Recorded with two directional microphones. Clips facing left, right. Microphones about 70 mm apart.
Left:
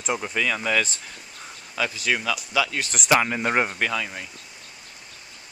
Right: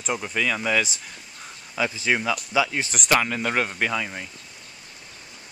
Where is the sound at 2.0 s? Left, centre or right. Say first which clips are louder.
Right 2 dB; right.